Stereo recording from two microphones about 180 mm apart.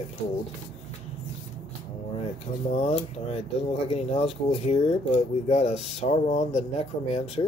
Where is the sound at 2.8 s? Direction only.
35° left (ahead or behind).